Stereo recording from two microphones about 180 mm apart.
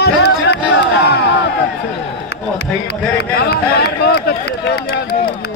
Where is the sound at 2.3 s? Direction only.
65° left (ahead or behind).